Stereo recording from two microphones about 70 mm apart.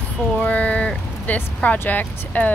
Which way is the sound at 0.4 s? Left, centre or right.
Left.